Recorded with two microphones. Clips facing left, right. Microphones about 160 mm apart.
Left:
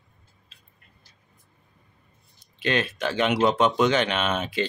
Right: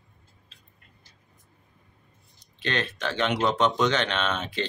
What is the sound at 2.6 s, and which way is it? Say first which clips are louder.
Speech: left 4 dB; 10° left (ahead or behind).